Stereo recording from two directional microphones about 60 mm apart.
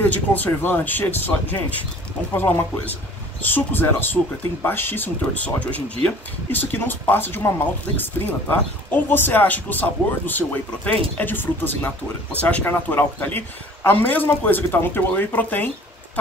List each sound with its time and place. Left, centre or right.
0.0 s speech: left